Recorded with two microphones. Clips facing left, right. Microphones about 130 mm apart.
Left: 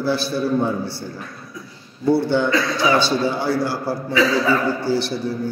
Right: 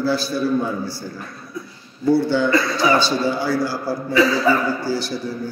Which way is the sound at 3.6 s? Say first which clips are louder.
Even; 65° left (ahead or behind).